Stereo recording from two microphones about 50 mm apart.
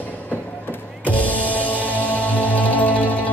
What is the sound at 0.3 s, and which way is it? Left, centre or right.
Music, left.